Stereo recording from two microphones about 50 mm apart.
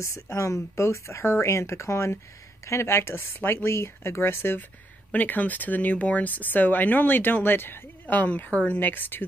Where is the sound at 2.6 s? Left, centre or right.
Left.